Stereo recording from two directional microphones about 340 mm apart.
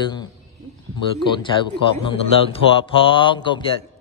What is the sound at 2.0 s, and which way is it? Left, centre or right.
Speech, centre.